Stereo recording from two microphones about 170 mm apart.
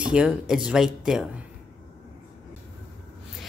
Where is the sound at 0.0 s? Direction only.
5° right (ahead or behind).